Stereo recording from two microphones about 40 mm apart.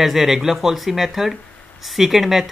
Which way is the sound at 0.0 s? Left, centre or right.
Centre.